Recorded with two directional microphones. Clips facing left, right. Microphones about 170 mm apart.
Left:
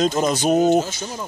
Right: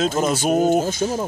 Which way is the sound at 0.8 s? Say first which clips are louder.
Right 9 dB; 40° right (ahead or behind).